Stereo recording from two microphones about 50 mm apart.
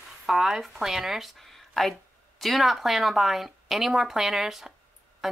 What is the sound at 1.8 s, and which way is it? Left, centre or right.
Speech, centre.